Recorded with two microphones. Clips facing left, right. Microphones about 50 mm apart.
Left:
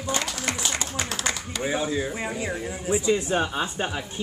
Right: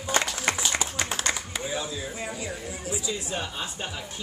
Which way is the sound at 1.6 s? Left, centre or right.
Left.